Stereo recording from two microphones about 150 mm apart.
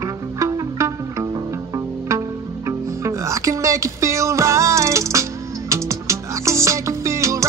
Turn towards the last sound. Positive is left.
turn(degrees=-20)  # may be behind; listen again after turning